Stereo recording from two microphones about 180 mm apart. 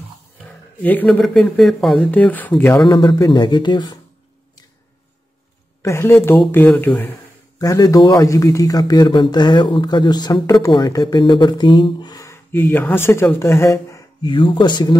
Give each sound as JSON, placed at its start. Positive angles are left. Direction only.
{"t": 0.8, "sound": "speech", "side_deg": 5}
{"t": 2.9, "sound": "speech", "side_deg": 25}
{"t": 5.8, "sound": "speech", "side_deg": 15}